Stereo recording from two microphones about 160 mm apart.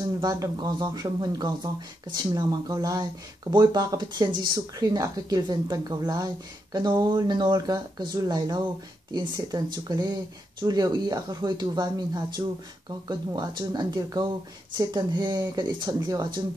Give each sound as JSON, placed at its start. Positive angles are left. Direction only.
{"t": 0.0, "sound": "speech", "side_deg": -25}